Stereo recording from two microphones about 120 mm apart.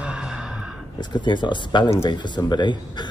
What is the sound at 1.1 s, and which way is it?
Speech, 40° left (ahead or behind).